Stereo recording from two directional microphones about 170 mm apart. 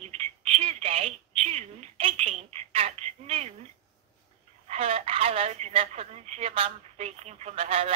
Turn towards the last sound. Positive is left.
turn(degrees=-35)  # may be behind; listen again after turning